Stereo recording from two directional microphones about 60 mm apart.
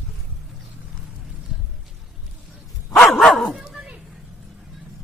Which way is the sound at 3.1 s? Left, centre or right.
Centre.